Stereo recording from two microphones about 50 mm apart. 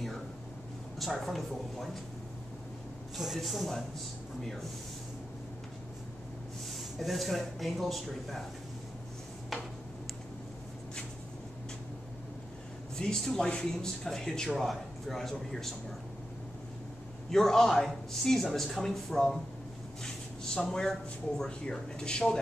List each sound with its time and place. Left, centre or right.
0.9 s speech: centre
3.2 s speech: centre
6.7 s speech: centre
12.9 s a man's voice: centre
17.3 s a man's voice: centre
20.7 s a man's voice: centre
21.5 s a man's voice: centre